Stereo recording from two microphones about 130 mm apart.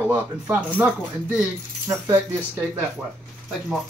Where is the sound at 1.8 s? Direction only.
25° right (ahead or behind).